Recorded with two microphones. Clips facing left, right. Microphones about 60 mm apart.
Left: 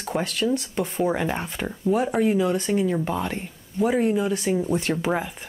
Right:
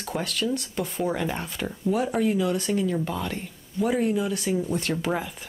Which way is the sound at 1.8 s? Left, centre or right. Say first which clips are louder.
Left 3 dB; centre.